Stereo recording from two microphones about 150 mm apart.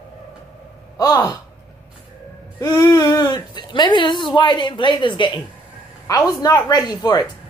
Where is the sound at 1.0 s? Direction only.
25° left (ahead or behind).